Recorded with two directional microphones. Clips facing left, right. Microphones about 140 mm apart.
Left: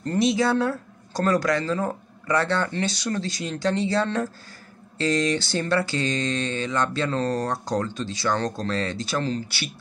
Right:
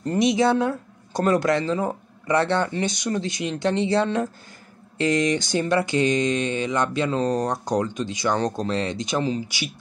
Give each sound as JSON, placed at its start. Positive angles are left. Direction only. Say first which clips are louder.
{"t": 0.0, "sound": "speech", "louder": "right 2 dB", "side_deg": -15}